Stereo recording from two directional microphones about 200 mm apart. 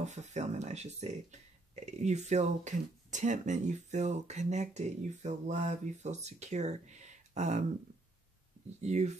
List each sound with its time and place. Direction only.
0.0 s speech: 35° right (ahead or behind)
8.8 s speech: 35° right (ahead or behind)